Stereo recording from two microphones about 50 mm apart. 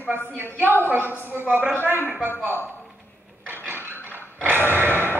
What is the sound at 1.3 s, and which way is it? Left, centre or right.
Speech, right.